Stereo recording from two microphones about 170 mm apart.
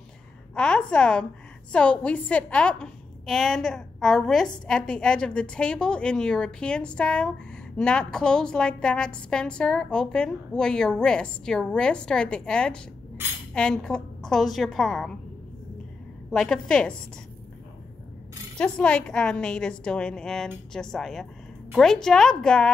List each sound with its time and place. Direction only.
0.6 s a woman's voice: 5° left (ahead or behind)
16.3 s a woman's voice: 5° left (ahead or behind)
18.6 s a woman's voice: 5° left (ahead or behind)